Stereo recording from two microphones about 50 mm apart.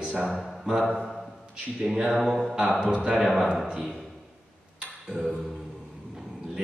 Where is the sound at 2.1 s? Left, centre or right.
Centre.